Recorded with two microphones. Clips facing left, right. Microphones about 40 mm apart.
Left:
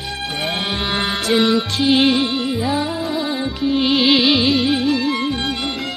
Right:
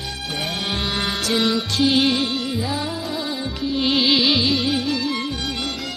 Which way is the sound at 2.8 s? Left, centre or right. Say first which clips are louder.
Left 4 dB; centre.